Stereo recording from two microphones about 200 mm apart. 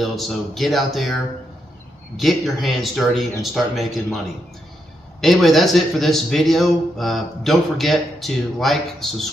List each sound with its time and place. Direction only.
0.0 s a man's voice: centre (ahead or behind)
2.1 s a man's voice: centre (ahead or behind)